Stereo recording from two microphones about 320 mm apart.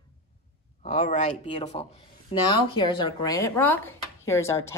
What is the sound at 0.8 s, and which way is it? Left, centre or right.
Speech, centre.